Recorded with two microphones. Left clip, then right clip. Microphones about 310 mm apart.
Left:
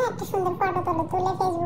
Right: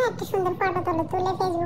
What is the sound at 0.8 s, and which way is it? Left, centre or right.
Speech, right.